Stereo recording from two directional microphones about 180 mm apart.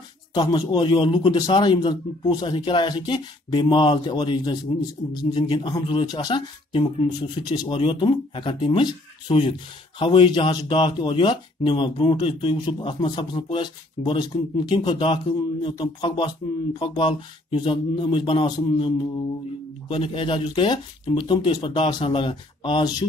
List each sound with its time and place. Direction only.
0.3 s speech: 25° left (ahead or behind)